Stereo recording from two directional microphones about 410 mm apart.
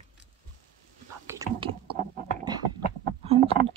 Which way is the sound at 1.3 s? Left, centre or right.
Centre.